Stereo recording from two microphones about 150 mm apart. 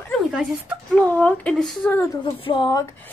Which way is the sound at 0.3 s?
10° right (ahead or behind).